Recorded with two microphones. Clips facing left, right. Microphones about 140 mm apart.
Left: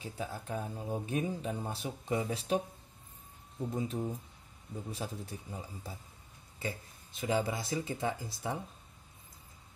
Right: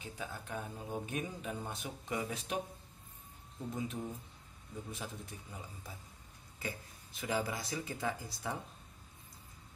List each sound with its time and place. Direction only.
0.0 s speech: 35° left (ahead or behind)
3.7 s speech: 35° left (ahead or behind)